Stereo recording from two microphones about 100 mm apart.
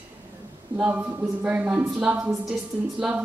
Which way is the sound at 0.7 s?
15° right (ahead or behind).